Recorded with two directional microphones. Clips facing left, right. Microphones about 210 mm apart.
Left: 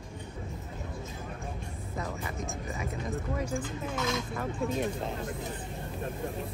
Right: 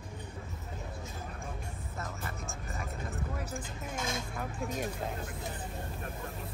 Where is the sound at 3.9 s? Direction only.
50° right (ahead or behind).